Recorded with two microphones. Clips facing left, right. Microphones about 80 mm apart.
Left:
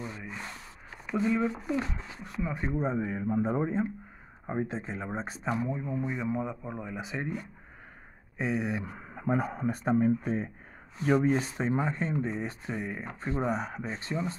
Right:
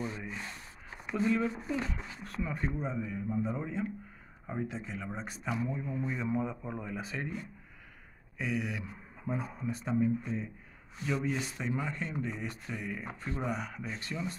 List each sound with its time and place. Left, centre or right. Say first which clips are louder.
0.0 s a sound: right 2 dB; centre
1.1 s speech: left 2 dB; centre
2.8 s speech: left 6 dB; left
5.9 s speech: left 3 dB; centre
8.4 s speech: left 4 dB; left
8.8 s speech: left 7 dB; left